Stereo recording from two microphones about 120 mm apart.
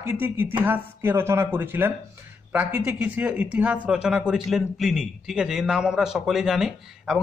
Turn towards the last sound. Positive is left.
turn(degrees=-5)  # may be behind; listen again after turning